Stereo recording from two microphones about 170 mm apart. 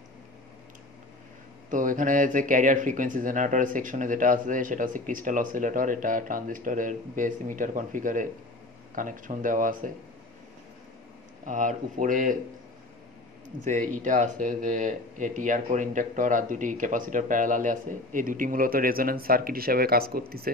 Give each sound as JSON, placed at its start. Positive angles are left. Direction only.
{"t": 1.7, "sound": "speech", "side_deg": -50}
{"t": 11.4, "sound": "speech", "side_deg": -50}
{"t": 13.7, "sound": "speech", "side_deg": -50}